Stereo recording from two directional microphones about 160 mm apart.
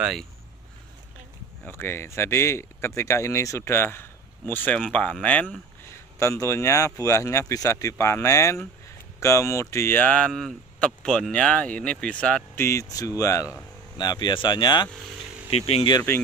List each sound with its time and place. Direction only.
0.0 s speech: centre (ahead or behind)
1.6 s speech: 15° left (ahead or behind)
12.6 s speech: 20° left (ahead or behind)
15.5 s speech: 40° left (ahead or behind)